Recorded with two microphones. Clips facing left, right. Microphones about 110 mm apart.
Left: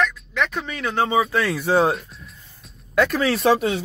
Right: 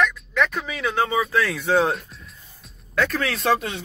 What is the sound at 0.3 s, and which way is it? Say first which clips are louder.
Speech: right 1 dB; centre (ahead or behind).